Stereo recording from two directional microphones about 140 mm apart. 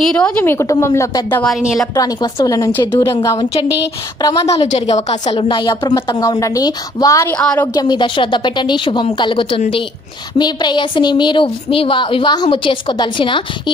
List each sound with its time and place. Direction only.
0.0 s a woman's voice: 5° left (ahead or behind)
1.4 s a woman's voice: 5° right (ahead or behind)
2.0 s a woman's voice: 30° left (ahead or behind)
4.5 s a woman's voice: 45° left (ahead or behind)
5.3 s a woman's voice: 40° left (ahead or behind); by 7.3 s 25° left (ahead or behind)
7.3 s a woman's voice: 5° left (ahead or behind)
7.6 s a woman's voice: 30° left (ahead or behind)